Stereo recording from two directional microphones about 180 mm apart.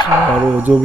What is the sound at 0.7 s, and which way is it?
Speech, 5° right (ahead or behind).